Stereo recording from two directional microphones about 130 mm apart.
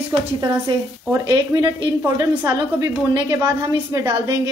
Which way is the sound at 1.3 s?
30° right (ahead or behind).